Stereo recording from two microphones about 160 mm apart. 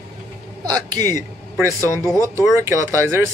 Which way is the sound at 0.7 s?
25° right (ahead or behind).